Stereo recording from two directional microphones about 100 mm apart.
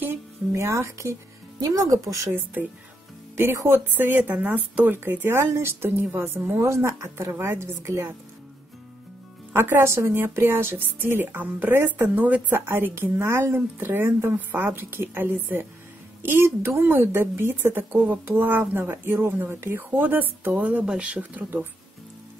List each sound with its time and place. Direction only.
0.0 s a woman's voice: 25° right (ahead or behind)
9.5 s a woman's voice: 20° right (ahead or behind)